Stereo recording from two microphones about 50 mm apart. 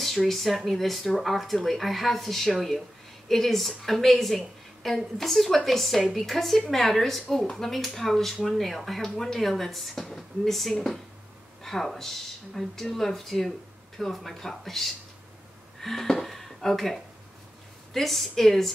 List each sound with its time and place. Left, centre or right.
0.0 s a woman's voice: centre